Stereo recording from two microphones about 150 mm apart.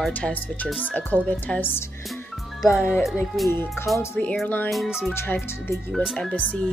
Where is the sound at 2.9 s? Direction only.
Centre (ahead or behind).